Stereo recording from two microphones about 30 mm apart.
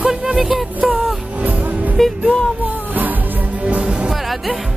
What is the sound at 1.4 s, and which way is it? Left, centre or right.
Music, right.